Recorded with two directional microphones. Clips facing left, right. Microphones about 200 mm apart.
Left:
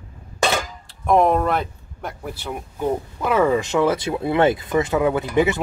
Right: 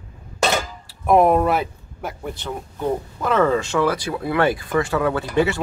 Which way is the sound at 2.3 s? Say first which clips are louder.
Even; 10° left (ahead or behind).